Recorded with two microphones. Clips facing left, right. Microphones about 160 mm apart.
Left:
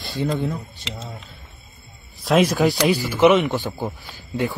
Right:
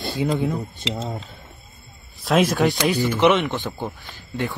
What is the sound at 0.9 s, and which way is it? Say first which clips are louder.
Speech: right 6 dB; 45° right (ahead or behind).